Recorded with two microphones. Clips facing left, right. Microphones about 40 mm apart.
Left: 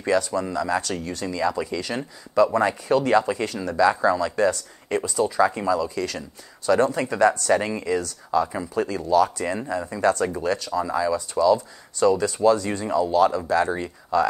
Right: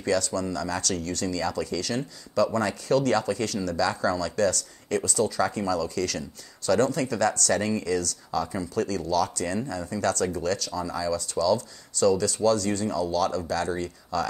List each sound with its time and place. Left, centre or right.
0.0 s speech: left